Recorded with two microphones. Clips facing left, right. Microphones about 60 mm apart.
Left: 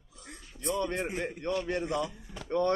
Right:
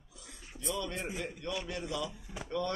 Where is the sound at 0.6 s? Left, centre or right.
Left.